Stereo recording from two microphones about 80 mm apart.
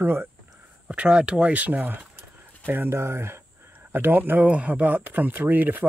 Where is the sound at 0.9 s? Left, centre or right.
Centre.